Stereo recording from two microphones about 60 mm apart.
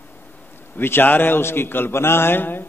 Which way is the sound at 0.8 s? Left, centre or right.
Left.